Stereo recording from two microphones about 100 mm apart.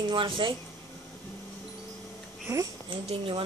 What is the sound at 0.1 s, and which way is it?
Speech, 55° right (ahead or behind).